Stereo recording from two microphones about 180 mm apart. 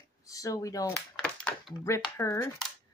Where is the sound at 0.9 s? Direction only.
5° left (ahead or behind).